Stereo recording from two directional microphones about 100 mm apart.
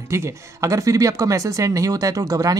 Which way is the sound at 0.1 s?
30° right (ahead or behind).